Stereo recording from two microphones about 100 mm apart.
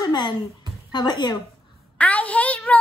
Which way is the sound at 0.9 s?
45° left (ahead or behind).